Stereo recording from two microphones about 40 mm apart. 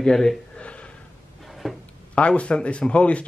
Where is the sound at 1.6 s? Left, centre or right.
Centre.